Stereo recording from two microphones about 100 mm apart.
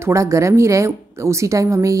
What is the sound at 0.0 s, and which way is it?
A woman's voice, 30° right (ahead or behind).